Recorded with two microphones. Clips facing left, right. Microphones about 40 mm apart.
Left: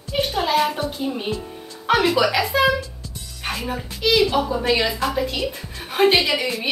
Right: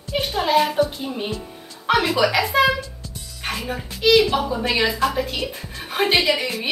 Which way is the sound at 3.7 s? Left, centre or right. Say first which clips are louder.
Right 4 dB; centre.